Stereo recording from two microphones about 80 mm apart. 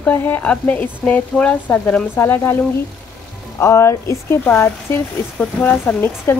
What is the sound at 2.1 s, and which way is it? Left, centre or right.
Speech, left.